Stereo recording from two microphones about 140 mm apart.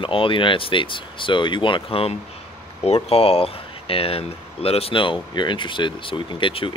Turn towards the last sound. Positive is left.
turn(degrees=40)  # may be behind; listen again after turning